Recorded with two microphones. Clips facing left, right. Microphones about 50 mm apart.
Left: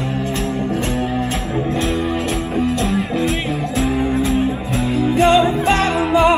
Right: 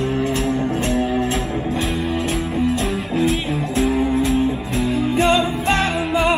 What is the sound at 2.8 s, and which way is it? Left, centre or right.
Music, centre.